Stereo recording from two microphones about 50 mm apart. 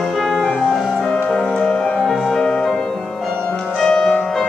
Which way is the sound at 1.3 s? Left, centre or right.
Centre.